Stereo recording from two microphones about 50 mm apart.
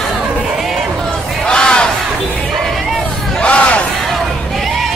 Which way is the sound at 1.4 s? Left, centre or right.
Centre.